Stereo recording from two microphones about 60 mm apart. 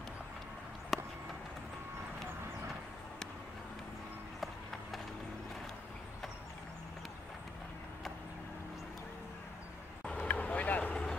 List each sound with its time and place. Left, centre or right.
0.9 s a sound: centre
4.4 s run: centre
10.2 s vehicle: left